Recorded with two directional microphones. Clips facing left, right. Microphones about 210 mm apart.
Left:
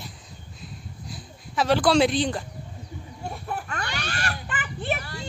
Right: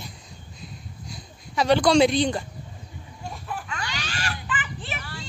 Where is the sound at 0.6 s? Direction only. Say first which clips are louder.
Left 1 dB; centre (ahead or behind).